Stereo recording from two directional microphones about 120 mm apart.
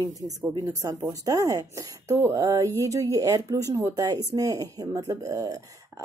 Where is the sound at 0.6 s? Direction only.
30° right (ahead or behind).